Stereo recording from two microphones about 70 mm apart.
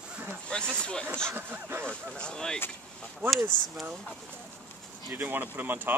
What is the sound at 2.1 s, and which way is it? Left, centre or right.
Speech, centre.